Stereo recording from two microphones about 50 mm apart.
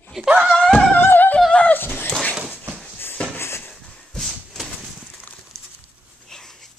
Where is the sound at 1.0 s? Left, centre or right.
Left.